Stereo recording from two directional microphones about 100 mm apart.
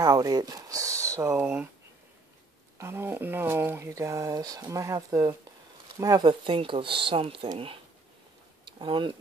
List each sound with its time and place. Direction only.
0.0 s speech: 40° right (ahead or behind)
1.3 s speech: 15° right (ahead or behind)
2.8 s speech: 25° right (ahead or behind)
3.9 s speech: 35° right (ahead or behind); by 9.1 s 55° right (ahead or behind)